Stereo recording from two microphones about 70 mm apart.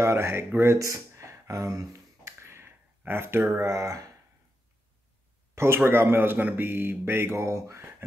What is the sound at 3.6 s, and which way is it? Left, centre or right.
Speech, right.